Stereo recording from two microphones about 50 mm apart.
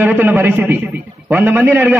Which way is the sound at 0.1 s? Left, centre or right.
Right.